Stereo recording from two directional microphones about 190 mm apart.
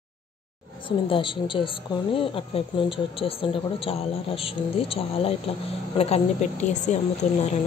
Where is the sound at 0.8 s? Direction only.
25° left (ahead or behind).